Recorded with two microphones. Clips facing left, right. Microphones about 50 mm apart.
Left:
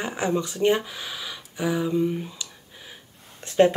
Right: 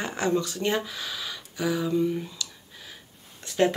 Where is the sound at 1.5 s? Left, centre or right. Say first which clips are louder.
Left 1 dB; left.